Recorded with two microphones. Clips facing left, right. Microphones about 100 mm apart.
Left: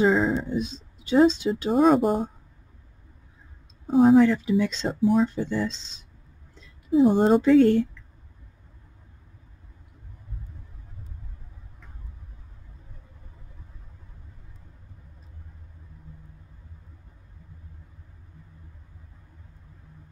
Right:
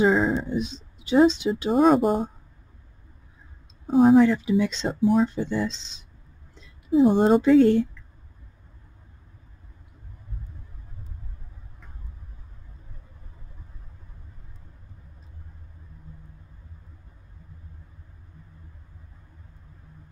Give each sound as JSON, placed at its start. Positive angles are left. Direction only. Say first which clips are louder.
{"t": 0.0, "sound": "speech", "louder": "right 1 dB", "side_deg": -5}
{"t": 0.6, "sound": "speech", "louder": "even", "side_deg": -20}
{"t": 1.7, "sound": "speech", "louder": "right 1 dB", "side_deg": 0}
{"t": 3.8, "sound": "speech", "louder": "even", "side_deg": 0}
{"t": 4.2, "sound": "speech", "louder": "even", "side_deg": -15}
{"t": 4.8, "sound": "speech", "louder": "even", "side_deg": -5}
{"t": 5.3, "sound": "speech", "louder": "right 1 dB", "side_deg": -15}
{"t": 6.9, "sound": "speech", "louder": "right 1 dB", "side_deg": 0}
{"t": 7.5, "sound": "speech", "louder": "even", "side_deg": -20}